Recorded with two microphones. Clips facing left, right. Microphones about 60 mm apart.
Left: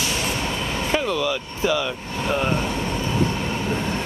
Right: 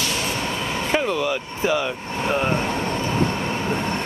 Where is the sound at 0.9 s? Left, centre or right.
Right.